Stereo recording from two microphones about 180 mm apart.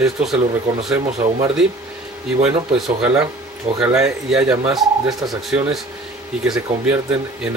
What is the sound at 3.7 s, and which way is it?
Speech, 35° right (ahead or behind).